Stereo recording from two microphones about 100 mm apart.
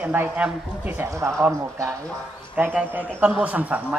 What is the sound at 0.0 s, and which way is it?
Speech, 20° right (ahead or behind).